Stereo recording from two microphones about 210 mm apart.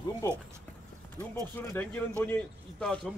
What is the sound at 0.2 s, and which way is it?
Speech, 15° left (ahead or behind).